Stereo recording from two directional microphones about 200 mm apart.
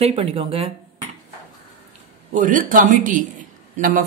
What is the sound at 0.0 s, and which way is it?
Speech, 30° right (ahead or behind).